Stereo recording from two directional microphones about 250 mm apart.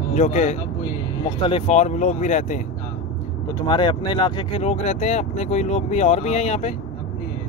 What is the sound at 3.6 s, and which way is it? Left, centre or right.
Speech, centre.